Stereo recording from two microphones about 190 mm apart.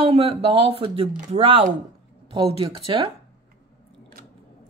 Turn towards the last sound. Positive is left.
turn(degrees=-25)  # may be behind; listen again after turning